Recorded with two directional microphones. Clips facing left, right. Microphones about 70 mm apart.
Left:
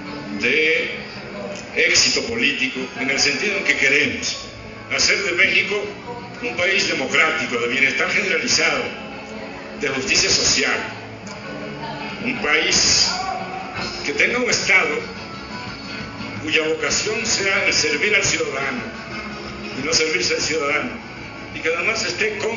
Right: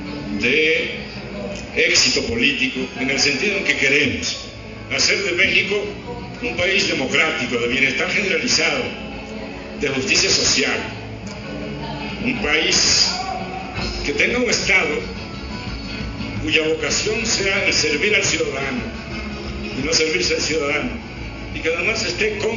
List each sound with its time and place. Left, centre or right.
0.4 s music: left
2.0 s a man's voice: centre
2.3 s a man's voice: left
10.6 s a man's voice: left
11.8 s music: left
12.6 s music: centre
14.7 s a man's voice: left
16.4 s a man's voice: left
19.9 s a man's voice: centre
20.6 s a man's voice: left